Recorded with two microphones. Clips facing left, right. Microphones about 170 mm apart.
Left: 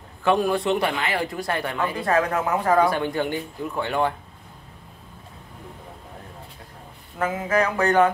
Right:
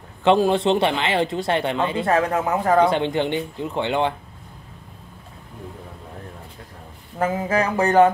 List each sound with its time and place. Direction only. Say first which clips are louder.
0.2 s a man's voice: right 4 dB; 25° right (ahead or behind)
7.2 s a man's voice: right 1 dB; 30° right (ahead or behind)